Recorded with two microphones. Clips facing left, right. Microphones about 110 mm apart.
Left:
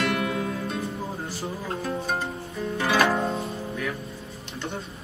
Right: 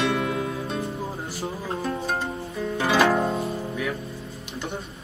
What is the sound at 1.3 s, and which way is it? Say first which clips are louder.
Music: right 1 dB; 10° right (ahead or behind).